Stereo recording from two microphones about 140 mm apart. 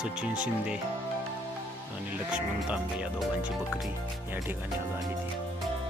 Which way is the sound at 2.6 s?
5° right (ahead or behind).